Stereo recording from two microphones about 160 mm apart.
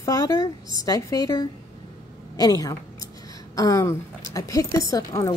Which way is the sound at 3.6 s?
20° left (ahead or behind).